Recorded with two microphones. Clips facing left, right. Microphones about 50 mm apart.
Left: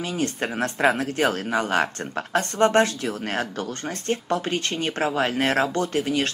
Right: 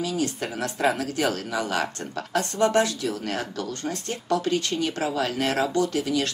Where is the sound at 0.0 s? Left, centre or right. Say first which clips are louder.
Left 1 dB; left.